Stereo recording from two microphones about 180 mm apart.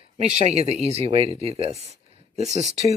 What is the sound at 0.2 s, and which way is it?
Speech, 35° right (ahead or behind).